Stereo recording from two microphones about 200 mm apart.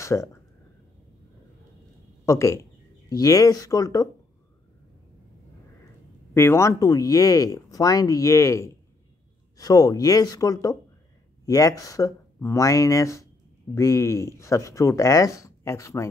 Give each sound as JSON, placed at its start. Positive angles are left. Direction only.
{"t": 0.0, "sound": "speech", "side_deg": 15}
{"t": 2.2, "sound": "speech", "side_deg": 15}
{"t": 6.3, "sound": "speech", "side_deg": 15}